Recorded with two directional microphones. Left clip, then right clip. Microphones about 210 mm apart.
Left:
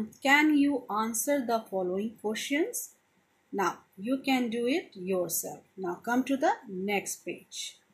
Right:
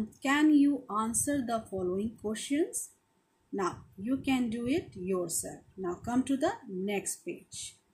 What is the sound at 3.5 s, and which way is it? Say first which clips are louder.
Speech: left 4 dB; 30° right (ahead or behind).